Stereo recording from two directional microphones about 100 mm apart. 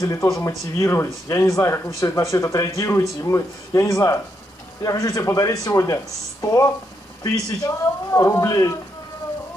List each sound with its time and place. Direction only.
0.0 s speech: 35° left (ahead or behind)